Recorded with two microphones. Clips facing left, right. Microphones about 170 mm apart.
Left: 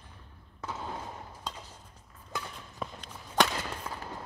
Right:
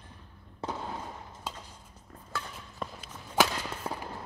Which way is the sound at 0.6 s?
30° right (ahead or behind).